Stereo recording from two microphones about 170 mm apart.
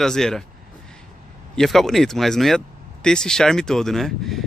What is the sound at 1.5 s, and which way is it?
Speech, centre (ahead or behind).